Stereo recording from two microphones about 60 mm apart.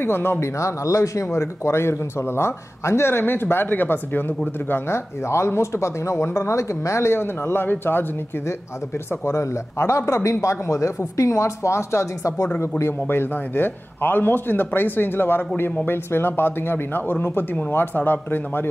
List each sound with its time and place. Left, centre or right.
0.0 s a man's voice: left
0.6 s a man's voice: left
9.2 s a man's voice: left
13.0 s a man's voice: left